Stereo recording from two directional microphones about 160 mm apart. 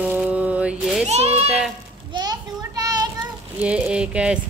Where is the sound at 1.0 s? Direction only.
40° right (ahead or behind).